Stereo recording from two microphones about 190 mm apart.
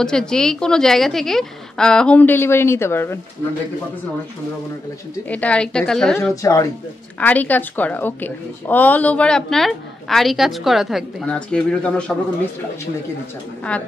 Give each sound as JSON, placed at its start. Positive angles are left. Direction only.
{"t": 0.0, "sound": "a woman's voice", "side_deg": 5}
{"t": 5.3, "sound": "a woman's voice", "side_deg": 5}
{"t": 6.4, "sound": "a woman's voice", "side_deg": 15}